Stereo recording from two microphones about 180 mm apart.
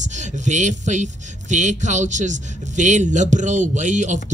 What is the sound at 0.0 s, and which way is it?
Speech, 40° right (ahead or behind).